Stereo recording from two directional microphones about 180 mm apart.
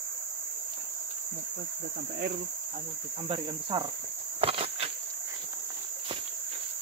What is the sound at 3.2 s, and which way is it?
Cricket, 30° right (ahead or behind).